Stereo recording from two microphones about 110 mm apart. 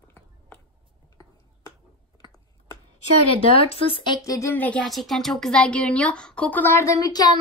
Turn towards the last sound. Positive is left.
turn(degrees=35)  # may be behind; listen again after turning